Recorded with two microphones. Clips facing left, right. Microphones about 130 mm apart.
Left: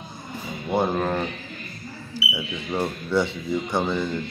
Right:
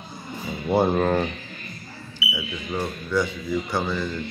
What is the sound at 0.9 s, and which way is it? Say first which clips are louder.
Speech: right 3 dB; centre (ahead or behind).